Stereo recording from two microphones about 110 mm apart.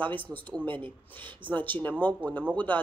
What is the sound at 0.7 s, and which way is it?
Speech, 50° right (ahead or behind).